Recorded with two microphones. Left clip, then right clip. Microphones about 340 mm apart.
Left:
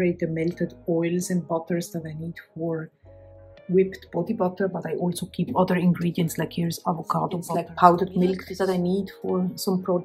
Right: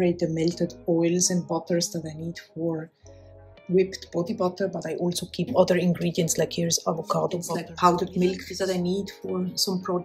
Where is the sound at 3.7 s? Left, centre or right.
Centre.